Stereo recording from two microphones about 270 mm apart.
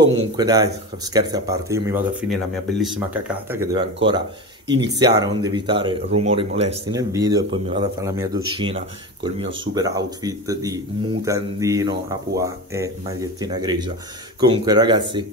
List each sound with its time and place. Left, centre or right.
0.0 s speech: centre